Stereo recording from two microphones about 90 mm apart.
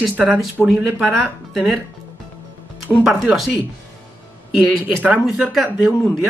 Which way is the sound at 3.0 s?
5° right (ahead or behind).